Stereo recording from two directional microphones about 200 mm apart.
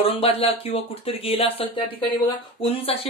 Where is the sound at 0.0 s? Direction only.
30° left (ahead or behind).